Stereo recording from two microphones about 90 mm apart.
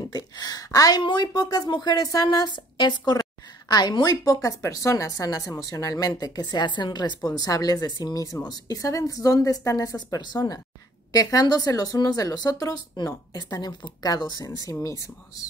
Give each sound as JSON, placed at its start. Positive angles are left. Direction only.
{"t": 0.1, "sound": "a sound", "side_deg": 45}
{"t": 1.0, "sound": "a woman's voice", "side_deg": 55}
{"t": 7.2, "sound": "a woman's voice", "side_deg": 45}